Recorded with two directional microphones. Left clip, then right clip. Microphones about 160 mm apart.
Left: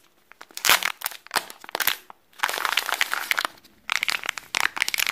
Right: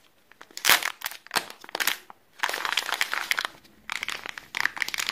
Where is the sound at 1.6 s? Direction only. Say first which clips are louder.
Left 2 dB; 15° left (ahead or behind).